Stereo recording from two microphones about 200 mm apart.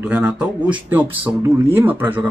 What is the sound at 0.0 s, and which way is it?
Speech, 5° right (ahead or behind).